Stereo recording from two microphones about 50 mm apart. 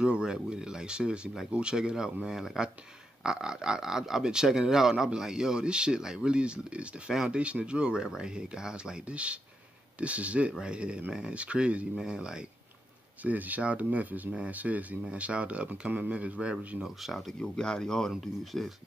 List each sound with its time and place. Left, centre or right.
0.0 s speech: centre
13.2 s speech: right
16.8 s speech: centre
17.3 s speech: centre
18.1 s speech: centre